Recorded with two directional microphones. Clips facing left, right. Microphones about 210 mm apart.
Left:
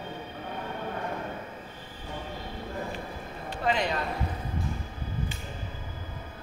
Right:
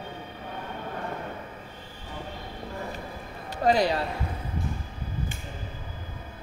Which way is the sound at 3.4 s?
40° right (ahead or behind).